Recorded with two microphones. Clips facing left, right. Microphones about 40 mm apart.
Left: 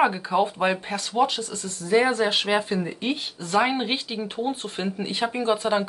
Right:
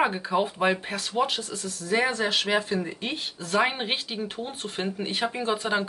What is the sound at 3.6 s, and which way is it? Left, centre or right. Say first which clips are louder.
Speech: left 2 dB; centre.